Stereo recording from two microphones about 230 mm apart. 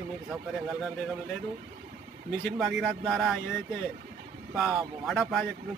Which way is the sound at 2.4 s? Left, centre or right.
Centre.